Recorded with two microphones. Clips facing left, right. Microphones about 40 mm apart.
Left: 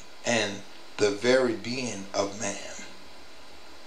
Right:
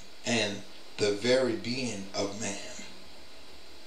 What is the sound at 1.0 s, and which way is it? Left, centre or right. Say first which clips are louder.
Speech: left 3 dB; left.